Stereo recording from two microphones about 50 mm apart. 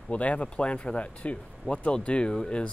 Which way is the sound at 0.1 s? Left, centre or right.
Left.